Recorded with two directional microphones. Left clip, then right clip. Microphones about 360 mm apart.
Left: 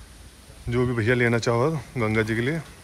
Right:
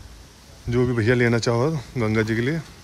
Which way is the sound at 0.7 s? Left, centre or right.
Centre.